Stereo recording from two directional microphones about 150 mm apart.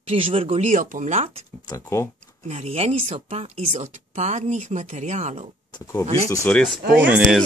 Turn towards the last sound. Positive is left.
turn(degrees=-5)  # may be behind; listen again after turning